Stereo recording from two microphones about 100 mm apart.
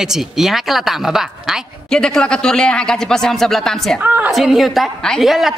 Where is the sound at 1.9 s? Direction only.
5° left (ahead or behind).